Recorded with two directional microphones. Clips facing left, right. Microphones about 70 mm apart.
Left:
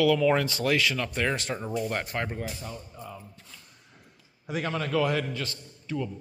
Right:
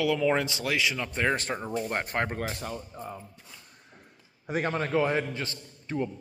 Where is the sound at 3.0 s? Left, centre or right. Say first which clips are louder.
Right 3 dB; right.